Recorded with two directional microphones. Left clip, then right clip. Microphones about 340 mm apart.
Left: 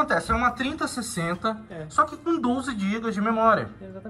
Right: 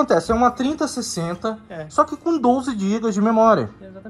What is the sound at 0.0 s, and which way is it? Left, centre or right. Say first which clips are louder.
Speech: right 6 dB; centre.